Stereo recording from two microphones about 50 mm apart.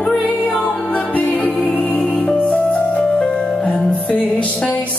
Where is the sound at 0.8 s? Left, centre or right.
Left.